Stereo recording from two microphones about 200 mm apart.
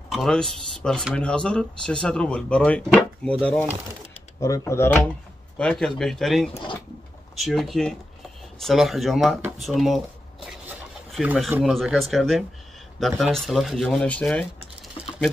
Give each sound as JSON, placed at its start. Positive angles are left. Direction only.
{"t": 0.1, "sound": "speech", "side_deg": 0}
{"t": 4.4, "sound": "speech", "side_deg": 15}
{"t": 15.0, "sound": "a sound", "side_deg": 25}